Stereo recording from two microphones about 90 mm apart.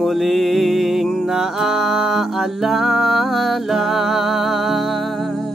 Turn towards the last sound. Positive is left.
turn(degrees=0)  # may be behind; listen again after turning